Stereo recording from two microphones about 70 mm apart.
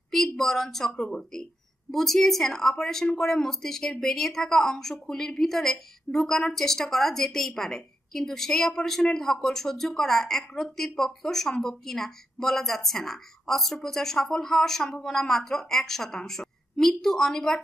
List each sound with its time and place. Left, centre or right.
0.1 s a woman's voice: centre